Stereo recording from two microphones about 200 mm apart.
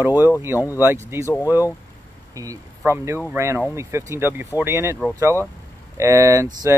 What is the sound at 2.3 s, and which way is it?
Speech, 15° right (ahead or behind).